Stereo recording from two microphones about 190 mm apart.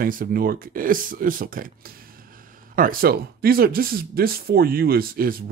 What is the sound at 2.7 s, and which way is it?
Speech, 50° right (ahead or behind).